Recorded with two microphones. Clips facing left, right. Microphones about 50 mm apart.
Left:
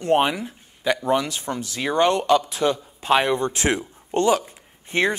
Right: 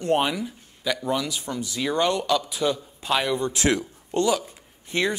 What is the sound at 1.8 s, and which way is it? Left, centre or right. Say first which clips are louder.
Speech: left 4 dB; left.